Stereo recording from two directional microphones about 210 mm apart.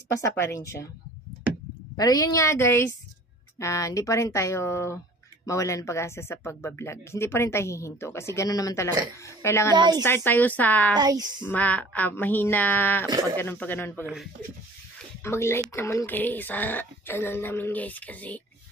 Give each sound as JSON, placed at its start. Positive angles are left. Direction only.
{"t": 0.2, "sound": "speech", "side_deg": 15}
{"t": 2.0, "sound": "speech", "side_deg": 15}
{"t": 9.8, "sound": "speech", "side_deg": -20}
{"t": 10.0, "sound": "speech", "side_deg": 10}
{"t": 11.0, "sound": "speech", "side_deg": -20}
{"t": 11.4, "sound": "speech", "side_deg": 5}
{"t": 15.2, "sound": "speech", "side_deg": 10}